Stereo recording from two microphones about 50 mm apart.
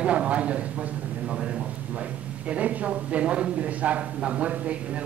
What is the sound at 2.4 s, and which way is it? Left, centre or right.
A man's voice, right.